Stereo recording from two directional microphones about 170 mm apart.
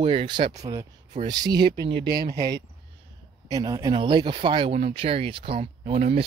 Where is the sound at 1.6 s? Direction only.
80° right.